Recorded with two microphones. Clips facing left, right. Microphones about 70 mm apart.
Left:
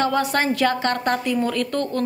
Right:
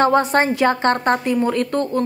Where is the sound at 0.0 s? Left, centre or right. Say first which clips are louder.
Right 5 dB; right.